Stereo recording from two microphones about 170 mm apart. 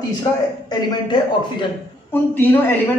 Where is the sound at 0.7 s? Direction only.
25° left (ahead or behind).